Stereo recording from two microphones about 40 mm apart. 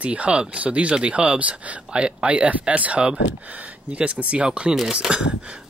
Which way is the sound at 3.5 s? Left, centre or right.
Right.